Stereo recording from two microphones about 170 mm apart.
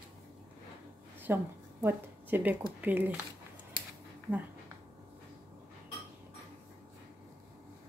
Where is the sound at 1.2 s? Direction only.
10° right (ahead or behind).